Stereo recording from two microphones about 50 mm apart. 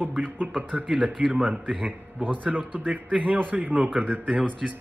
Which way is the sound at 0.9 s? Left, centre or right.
Right.